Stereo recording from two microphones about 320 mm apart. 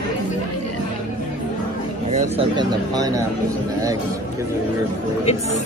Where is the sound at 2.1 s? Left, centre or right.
Centre.